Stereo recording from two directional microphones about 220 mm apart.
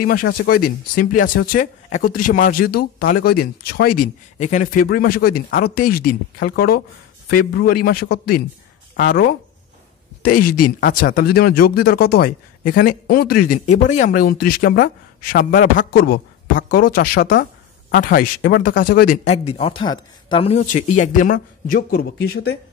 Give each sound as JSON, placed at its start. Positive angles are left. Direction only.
{"t": 0.0, "sound": "a man's voice", "side_deg": 40}
{"t": 19.2, "sound": "speech", "side_deg": 30}